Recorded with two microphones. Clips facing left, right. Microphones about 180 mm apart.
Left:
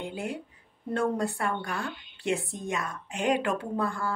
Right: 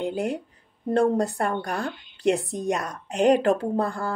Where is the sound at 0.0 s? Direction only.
40° right (ahead or behind).